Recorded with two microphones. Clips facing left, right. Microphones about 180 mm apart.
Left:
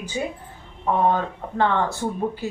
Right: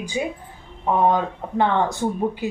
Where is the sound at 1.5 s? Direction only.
15° right (ahead or behind).